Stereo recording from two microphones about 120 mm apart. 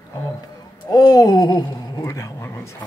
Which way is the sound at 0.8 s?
35° left (ahead or behind).